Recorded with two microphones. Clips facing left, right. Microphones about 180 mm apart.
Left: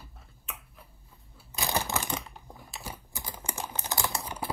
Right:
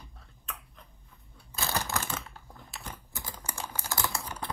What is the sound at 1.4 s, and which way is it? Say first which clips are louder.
Crumpling: left 2 dB; 10° left (ahead or behind).